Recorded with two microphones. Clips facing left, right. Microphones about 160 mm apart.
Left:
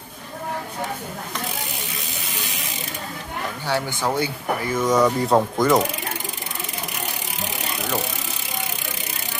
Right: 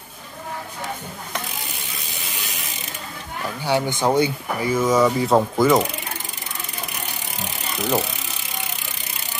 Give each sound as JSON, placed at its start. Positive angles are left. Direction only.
{"t": 3.6, "sound": "speech", "side_deg": -20}
{"t": 4.7, "sound": "mechanisms", "side_deg": -5}